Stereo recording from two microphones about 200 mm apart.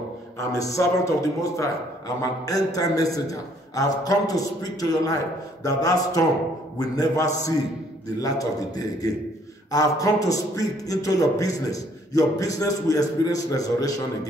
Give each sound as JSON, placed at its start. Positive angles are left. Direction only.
{"t": 0.4, "sound": "a man's voice", "side_deg": 15}